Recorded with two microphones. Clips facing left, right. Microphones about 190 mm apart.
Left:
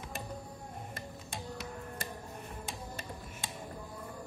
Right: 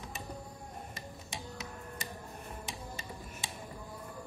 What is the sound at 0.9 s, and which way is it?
Music, 55° left (ahead or behind).